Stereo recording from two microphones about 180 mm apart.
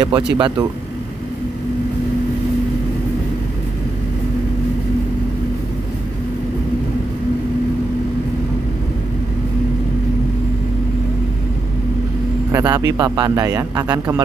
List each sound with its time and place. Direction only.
0.0 s speech: 25° right (ahead or behind)
12.5 s speech: 15° right (ahead or behind)